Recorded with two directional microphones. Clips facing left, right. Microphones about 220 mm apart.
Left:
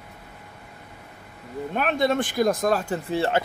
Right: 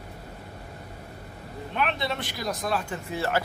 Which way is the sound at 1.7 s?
45° left (ahead or behind).